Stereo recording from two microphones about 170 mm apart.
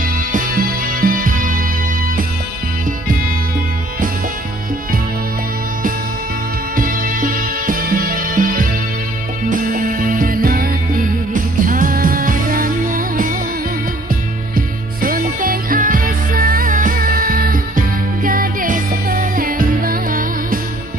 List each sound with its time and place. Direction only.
0.3 s music: 55° right (ahead or behind)
6.8 s music: 55° right (ahead or behind)
14.5 s music: 55° right (ahead or behind)